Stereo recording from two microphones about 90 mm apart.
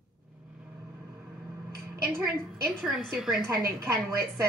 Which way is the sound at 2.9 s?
5° right (ahead or behind).